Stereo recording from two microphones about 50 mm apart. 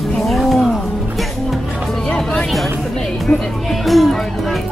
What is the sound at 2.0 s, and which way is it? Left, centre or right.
Speech, centre.